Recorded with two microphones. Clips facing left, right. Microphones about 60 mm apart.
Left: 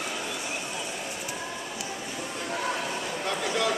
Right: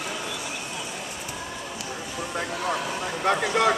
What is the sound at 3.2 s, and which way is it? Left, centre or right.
Speech, right.